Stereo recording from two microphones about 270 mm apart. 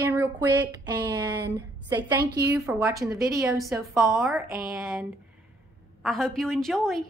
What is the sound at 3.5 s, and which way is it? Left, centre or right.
A woman's voice, centre.